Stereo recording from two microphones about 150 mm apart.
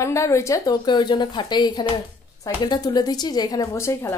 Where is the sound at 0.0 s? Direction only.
20° left (ahead or behind).